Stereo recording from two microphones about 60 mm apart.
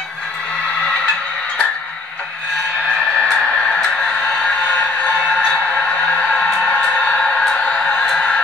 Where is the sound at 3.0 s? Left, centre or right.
Centre.